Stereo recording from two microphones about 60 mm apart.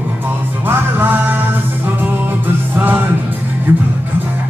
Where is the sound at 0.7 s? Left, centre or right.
Right.